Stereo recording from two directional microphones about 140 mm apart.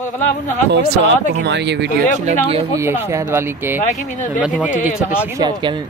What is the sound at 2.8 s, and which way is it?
Speech, 20° right (ahead or behind).